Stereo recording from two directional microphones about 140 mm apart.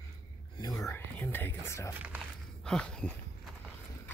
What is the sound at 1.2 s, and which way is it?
Whispering, 15° left (ahead or behind).